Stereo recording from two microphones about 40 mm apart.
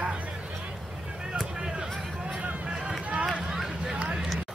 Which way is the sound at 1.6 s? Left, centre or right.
Right.